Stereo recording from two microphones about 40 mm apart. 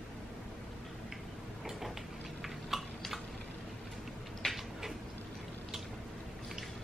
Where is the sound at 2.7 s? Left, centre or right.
Centre.